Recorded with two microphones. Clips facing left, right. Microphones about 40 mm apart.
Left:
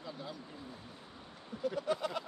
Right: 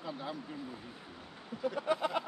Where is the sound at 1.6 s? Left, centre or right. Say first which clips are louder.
Right 2 dB; right.